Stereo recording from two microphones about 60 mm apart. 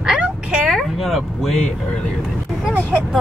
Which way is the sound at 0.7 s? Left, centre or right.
Centre.